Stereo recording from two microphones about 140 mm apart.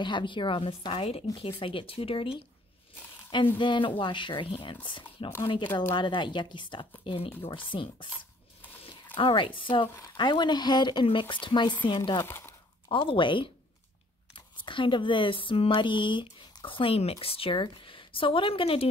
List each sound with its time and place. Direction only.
0.0 s speech: 35° left (ahead or behind)
9.1 s speech: 40° left (ahead or behind)
12.2 s speech: 15° left (ahead or behind)
12.8 s speech: 40° left (ahead or behind)
14.6 s speech: 35° left (ahead or behind)